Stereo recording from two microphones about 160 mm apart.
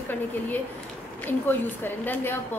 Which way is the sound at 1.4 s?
10° left (ahead or behind).